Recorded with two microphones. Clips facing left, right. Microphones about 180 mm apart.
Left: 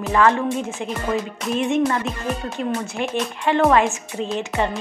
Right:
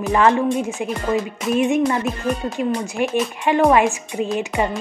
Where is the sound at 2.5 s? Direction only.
10° right (ahead or behind).